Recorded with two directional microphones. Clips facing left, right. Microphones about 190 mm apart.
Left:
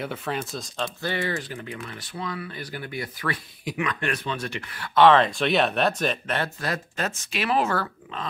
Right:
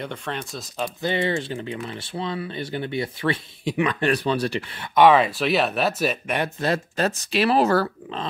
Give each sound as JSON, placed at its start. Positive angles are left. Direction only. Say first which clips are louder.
{"t": 0.0, "sound": "speech", "louder": "left 1 dB", "side_deg": 5}
{"t": 1.0, "sound": "speech", "louder": "right 6 dB", "side_deg": -25}
{"t": 6.6, "sound": "speech", "louder": "right 6 dB", "side_deg": -30}